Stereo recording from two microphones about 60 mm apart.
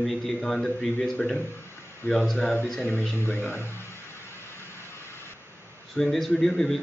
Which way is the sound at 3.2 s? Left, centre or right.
Left.